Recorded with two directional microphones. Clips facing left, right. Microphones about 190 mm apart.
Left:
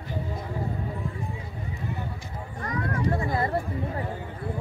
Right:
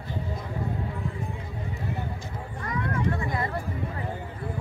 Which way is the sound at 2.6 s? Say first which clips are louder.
Left 1 dB; 40° left (ahead or behind).